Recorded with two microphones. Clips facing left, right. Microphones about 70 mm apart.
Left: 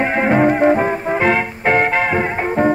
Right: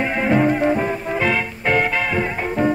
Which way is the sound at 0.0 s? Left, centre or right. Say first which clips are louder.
Left 3 dB; left.